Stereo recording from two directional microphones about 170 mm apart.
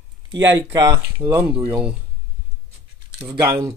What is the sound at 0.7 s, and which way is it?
Speech, 20° right (ahead or behind).